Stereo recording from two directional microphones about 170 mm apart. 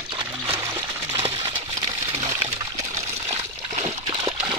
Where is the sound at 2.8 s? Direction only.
45° right (ahead or behind).